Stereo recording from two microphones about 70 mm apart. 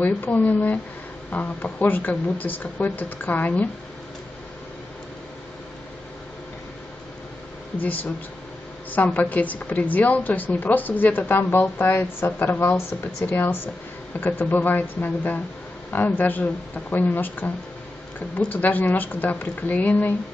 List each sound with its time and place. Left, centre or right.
0.0 s a woman's voice: left
7.8 s a woman's voice: left
18.5 s a woman's voice: left